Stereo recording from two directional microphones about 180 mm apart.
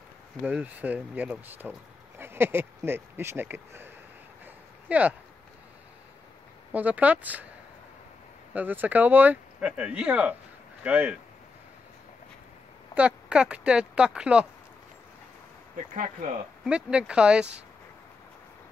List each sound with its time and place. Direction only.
0.4 s speech: 10° right (ahead or behind)
6.7 s speech: 10° right (ahead or behind)
8.5 s speech: 10° right (ahead or behind)
12.9 s speech: 5° right (ahead or behind)
15.7 s speech: 45° right (ahead or behind)
16.6 s speech: 5° right (ahead or behind)